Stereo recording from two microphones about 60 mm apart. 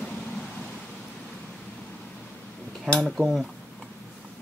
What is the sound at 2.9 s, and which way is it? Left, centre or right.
Speech, centre.